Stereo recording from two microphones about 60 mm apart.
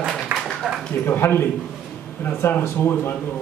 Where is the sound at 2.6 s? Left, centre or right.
Left.